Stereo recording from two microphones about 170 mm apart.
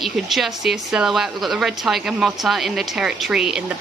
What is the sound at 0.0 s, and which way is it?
A woman's voice, centre (ahead or behind).